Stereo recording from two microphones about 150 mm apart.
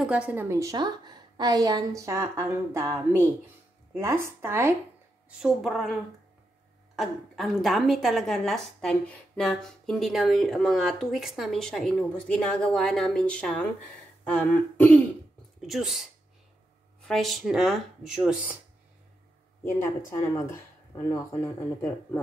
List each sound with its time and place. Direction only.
0.0 s a woman's voice: 10° right (ahead or behind)
5.4 s a woman's voice: centre (ahead or behind)
7.0 s a woman's voice: centre (ahead or behind)
15.6 s a woman's voice: centre (ahead or behind)
20.1 s speech: 20° left (ahead or behind)